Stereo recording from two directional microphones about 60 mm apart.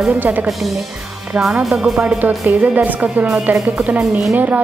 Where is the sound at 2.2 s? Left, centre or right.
Right.